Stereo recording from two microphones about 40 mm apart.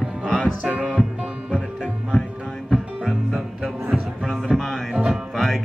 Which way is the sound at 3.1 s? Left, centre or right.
Centre.